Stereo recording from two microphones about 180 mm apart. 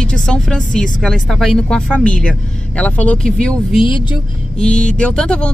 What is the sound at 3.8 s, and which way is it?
Speech, 25° left (ahead or behind).